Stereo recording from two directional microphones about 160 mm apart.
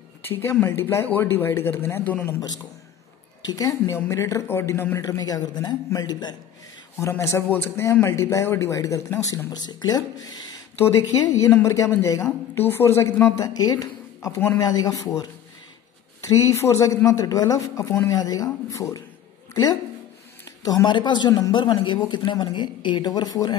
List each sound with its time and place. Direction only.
0.3 s a man's voice: 15° left (ahead or behind)
3.4 s a woman's voice: 20° left (ahead or behind)